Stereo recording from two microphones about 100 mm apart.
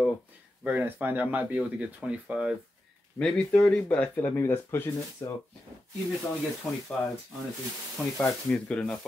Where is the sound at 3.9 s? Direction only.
20° left (ahead or behind).